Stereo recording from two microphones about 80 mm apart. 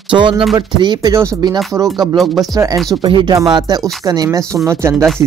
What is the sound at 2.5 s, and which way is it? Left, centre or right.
Speech, right.